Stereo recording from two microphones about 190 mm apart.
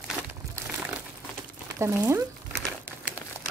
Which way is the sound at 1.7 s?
15° right (ahead or behind).